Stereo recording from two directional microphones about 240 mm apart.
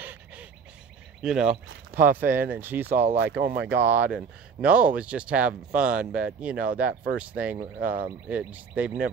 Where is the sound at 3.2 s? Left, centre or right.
Right.